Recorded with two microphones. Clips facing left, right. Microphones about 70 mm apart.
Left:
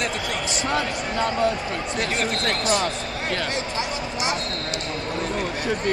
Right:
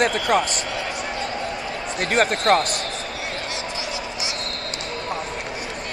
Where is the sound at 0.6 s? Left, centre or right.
Left.